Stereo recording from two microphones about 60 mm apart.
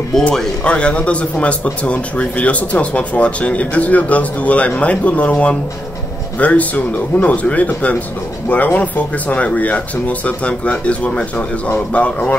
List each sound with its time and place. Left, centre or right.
0.7 s speech: centre